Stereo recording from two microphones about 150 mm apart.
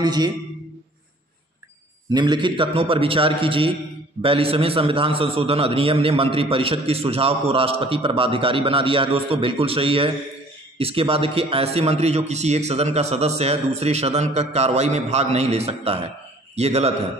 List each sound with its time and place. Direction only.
0.0 s a man's voice: 25° right (ahead or behind)
2.0 s a man's voice: 30° right (ahead or behind); by 16.9 s 45° right (ahead or behind)